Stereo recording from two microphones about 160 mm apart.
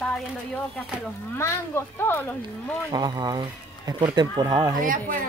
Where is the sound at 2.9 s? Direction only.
25° right (ahead or behind).